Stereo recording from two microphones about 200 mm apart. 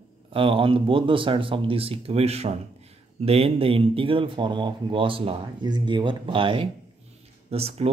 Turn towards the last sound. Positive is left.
turn(degrees=-30)  # may be behind; listen again after turning